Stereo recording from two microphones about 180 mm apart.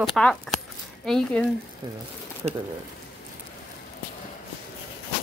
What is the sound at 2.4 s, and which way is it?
Speech, 25° right (ahead or behind).